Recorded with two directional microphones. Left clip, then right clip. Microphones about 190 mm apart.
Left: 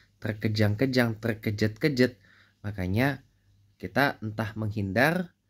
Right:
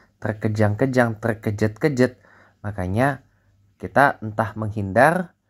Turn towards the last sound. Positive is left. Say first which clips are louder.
# right 8 dB
turn(degrees=15)  # may be behind; listen again after turning